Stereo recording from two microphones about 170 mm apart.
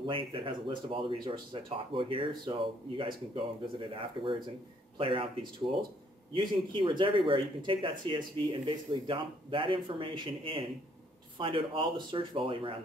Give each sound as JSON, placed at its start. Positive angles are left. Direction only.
{"t": 0.0, "sound": "speech", "side_deg": -30}